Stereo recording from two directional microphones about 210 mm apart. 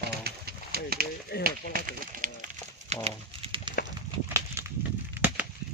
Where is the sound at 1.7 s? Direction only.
40° right (ahead or behind).